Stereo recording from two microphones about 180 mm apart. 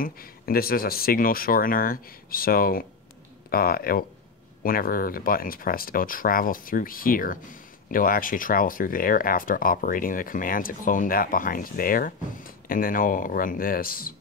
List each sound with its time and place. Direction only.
0.0 s speech: 55° left (ahead or behind)